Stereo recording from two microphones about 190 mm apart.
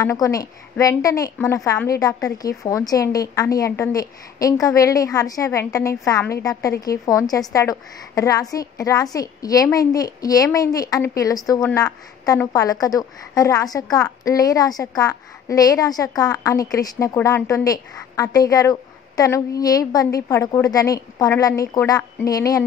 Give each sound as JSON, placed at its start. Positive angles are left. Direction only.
{"t": 0.0, "sound": "a woman's voice", "side_deg": 15}